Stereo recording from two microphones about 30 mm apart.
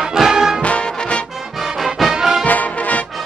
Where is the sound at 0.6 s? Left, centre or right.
Left.